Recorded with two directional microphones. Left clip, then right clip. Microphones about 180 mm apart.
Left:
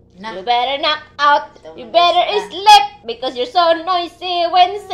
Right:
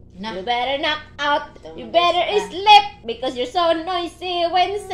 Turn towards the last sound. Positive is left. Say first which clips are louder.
# left 6 dB
turn(degrees=-10)  # may be behind; listen again after turning